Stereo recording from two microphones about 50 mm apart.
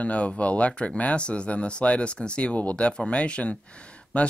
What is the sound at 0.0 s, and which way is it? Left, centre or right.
Speech, left.